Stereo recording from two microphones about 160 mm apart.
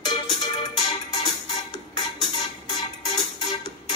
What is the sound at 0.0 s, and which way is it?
Music, 30° left (ahead or behind).